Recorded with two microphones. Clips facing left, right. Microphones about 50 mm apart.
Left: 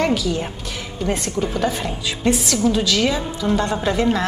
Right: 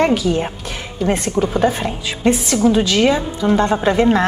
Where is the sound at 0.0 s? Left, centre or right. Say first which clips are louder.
Right 4 dB; right.